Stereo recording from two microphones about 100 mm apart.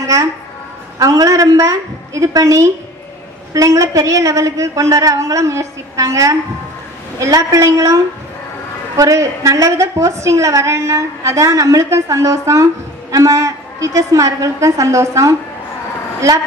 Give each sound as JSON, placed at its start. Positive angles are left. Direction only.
{"t": 0.0, "sound": "a woman's voice", "side_deg": -35}